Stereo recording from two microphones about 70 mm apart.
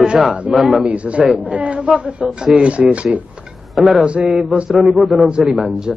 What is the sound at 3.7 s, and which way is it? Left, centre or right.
Speech, centre.